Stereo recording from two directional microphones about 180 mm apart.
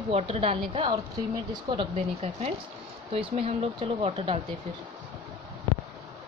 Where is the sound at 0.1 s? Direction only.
35° right (ahead or behind).